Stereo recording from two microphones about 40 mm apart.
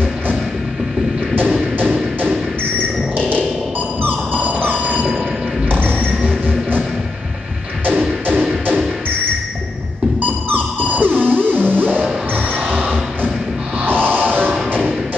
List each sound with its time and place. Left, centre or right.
4.0 s music: right
4.6 s a sound: right
5.7 s music: right
10.9 s music: right
13.8 s music: right